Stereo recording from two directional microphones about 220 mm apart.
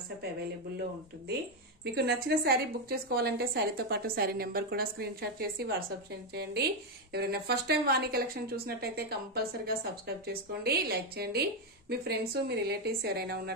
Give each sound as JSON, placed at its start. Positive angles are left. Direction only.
{"t": 2.0, "sound": "speech", "side_deg": -50}